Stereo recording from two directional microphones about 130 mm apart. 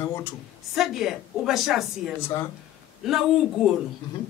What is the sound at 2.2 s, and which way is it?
Speech, 20° left (ahead or behind).